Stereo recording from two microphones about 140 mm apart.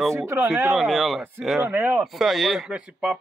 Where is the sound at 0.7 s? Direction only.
Centre (ahead or behind).